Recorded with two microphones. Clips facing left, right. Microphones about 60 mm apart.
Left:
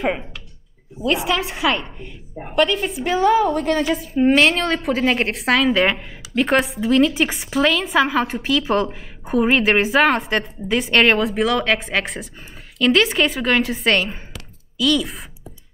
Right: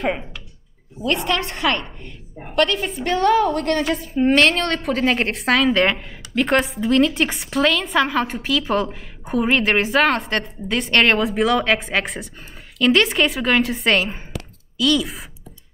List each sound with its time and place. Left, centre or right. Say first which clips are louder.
1.0 s a woman's voice: left 1 dB; centre
2.3 s a woman's voice: left 1 dB; centre
2.6 s a woman's voice: left 1 dB; centre